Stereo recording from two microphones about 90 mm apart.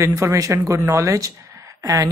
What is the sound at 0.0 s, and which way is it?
Speech, 35° right (ahead or behind).